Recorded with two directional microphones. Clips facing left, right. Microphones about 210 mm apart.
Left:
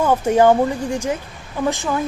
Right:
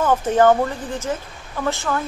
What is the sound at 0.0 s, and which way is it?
A woman's voice, 10° left (ahead or behind).